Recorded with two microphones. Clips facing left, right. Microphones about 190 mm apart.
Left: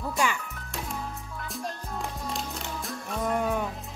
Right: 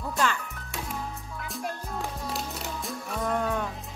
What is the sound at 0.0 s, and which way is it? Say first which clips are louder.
Music: even; 10° left (ahead or behind).